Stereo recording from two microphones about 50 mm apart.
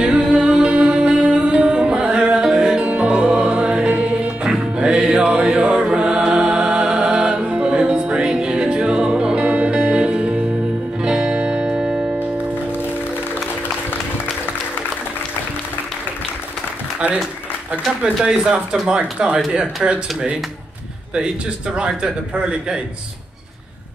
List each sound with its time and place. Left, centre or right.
0.0 s music: centre
9.4 s music: right
11.0 s music: centre
18.0 s speech: centre
21.7 s speech: centre